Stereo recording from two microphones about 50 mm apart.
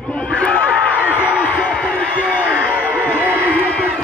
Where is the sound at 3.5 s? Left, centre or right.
Left.